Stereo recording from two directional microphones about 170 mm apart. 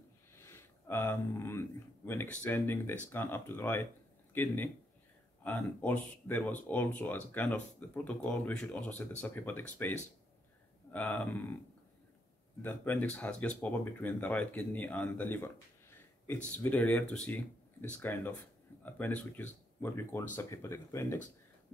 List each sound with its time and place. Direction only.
0.5 s a sound: 15° left (ahead or behind)
2.0 s speech: 10° left (ahead or behind)
12.6 s speech: 10° left (ahead or behind)